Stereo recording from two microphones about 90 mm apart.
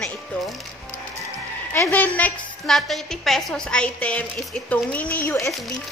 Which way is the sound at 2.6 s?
Centre (ahead or behind).